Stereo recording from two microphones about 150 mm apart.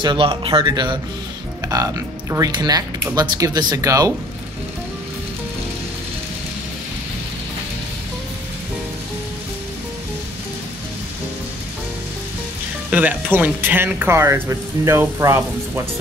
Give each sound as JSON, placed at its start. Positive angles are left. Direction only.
{"t": 0.0, "sound": "speech", "side_deg": -35}
{"t": 12.9, "sound": "speech", "side_deg": -10}